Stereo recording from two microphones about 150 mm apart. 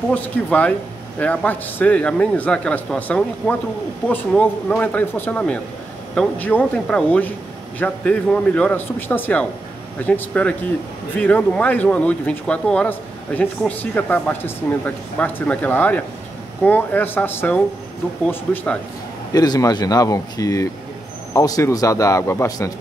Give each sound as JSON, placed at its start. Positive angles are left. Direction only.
{"t": 0.1, "sound": "speech", "side_deg": 10}
{"t": 19.3, "sound": "speech", "side_deg": 25}